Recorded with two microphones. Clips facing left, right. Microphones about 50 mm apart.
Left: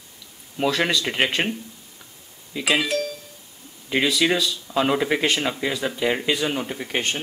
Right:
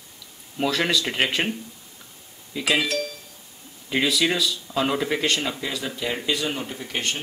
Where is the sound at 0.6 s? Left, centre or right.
Centre.